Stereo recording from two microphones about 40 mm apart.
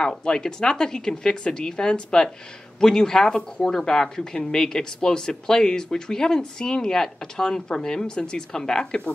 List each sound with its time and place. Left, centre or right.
0.0 s speech: centre